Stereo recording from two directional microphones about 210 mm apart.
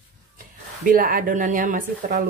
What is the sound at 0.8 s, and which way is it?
Speech, 40° right (ahead or behind).